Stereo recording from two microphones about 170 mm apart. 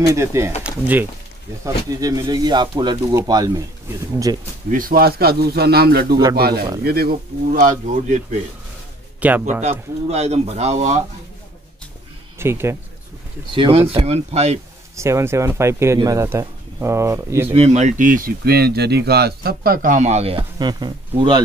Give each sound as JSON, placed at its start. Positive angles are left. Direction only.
{"t": 0.1, "sound": "speech", "side_deg": -15}
{"t": 1.6, "sound": "speech", "side_deg": -20}
{"t": 4.6, "sound": "speech", "side_deg": -55}
{"t": 9.2, "sound": "speech", "side_deg": -10}
{"t": 9.6, "sound": "speech", "side_deg": -40}
{"t": 12.4, "sound": "speech", "side_deg": -15}
{"t": 13.6, "sound": "speech", "side_deg": -30}
{"t": 15.0, "sound": "speech", "side_deg": -15}
{"t": 17.5, "sound": "speech", "side_deg": -35}